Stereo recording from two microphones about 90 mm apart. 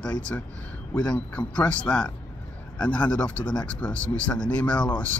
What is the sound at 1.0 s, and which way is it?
A man's voice, 15° left (ahead or behind).